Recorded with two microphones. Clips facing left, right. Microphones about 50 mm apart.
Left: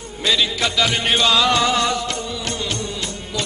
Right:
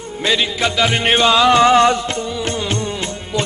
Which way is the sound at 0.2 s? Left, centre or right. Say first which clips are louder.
Right 2 dB; right.